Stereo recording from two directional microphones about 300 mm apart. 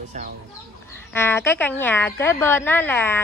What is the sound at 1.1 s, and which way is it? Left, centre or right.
A woman's voice, centre.